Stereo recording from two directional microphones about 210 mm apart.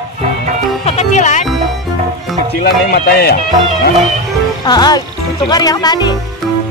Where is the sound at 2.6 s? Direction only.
45° left (ahead or behind).